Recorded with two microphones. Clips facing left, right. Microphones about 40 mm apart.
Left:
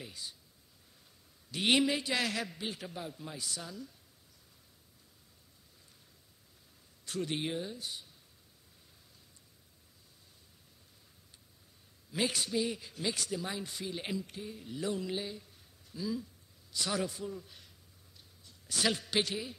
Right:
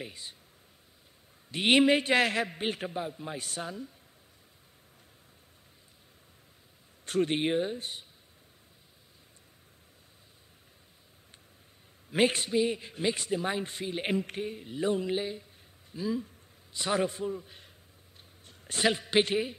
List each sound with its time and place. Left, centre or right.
0.0 s speech: right
1.5 s a man's voice: right
2.9 s mantra: right
3.3 s a man's voice: right
7.1 s a man's voice: right
12.1 s a man's voice: right
14.6 s mantra: right
15.9 s a man's voice: right
18.4 s a sound: right
18.8 s a man's voice: right